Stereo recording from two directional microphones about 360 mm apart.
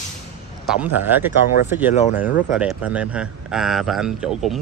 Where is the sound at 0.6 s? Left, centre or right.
Centre.